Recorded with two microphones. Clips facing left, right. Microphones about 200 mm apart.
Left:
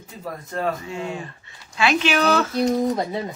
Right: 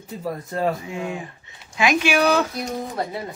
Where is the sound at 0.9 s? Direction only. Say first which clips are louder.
Even; 15° right (ahead or behind).